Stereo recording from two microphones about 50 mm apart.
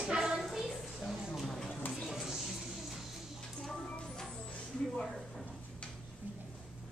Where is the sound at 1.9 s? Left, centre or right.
Centre.